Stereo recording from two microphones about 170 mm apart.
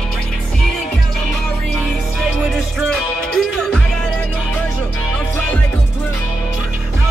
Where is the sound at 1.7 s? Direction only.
5° right (ahead or behind).